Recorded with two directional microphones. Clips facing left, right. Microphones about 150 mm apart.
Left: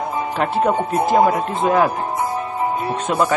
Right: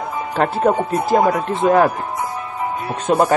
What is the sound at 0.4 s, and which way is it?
Speech, 40° right (ahead or behind).